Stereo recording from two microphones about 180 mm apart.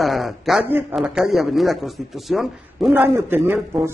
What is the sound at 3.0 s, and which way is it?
Speech, 10° right (ahead or behind).